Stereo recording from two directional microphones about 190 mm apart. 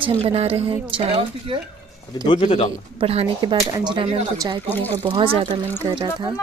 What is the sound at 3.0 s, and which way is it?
A woman's voice, 30° right (ahead or behind).